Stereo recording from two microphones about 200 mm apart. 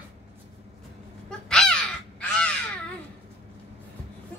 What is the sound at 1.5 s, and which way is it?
Crow, 5° left (ahead or behind).